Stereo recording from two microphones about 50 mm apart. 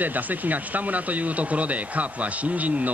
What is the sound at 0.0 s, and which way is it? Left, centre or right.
Speech, right.